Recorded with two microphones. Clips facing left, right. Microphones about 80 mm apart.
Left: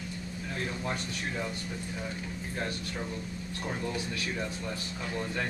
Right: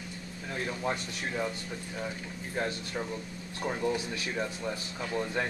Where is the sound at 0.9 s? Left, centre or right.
Centre.